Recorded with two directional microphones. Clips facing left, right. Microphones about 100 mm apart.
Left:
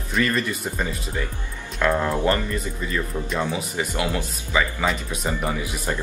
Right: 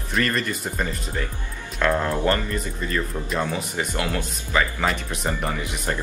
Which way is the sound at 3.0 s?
Centre (ahead or behind).